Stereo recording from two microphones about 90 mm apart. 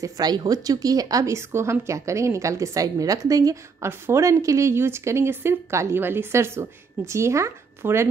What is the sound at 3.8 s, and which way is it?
A woman's voice, 30° right (ahead or behind).